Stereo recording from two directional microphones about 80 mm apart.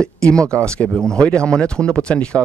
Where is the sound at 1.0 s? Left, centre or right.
Centre.